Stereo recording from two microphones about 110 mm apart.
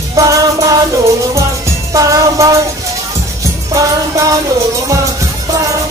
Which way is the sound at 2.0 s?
30° right (ahead or behind).